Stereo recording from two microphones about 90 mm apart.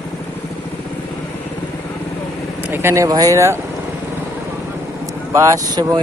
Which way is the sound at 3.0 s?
40° right (ahead or behind).